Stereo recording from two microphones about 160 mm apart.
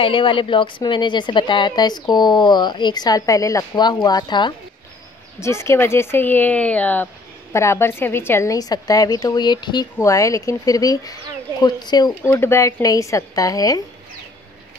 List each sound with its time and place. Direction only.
0.0 s a woman's voice: 30° left (ahead or behind)
5.4 s a woman's voice: 15° left (ahead or behind)
12.2 s a woman's voice: 15° left (ahead or behind)